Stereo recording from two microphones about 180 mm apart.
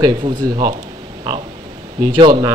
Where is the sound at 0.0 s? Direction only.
25° right (ahead or behind).